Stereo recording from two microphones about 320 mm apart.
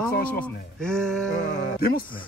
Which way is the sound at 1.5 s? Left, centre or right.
Left.